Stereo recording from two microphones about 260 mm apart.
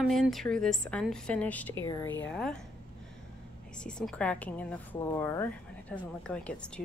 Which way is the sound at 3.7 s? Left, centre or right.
Centre.